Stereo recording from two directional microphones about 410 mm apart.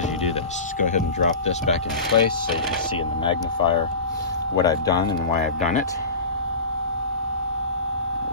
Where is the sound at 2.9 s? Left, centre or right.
Centre.